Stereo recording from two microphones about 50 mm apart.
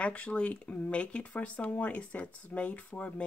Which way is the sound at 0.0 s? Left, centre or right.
Left.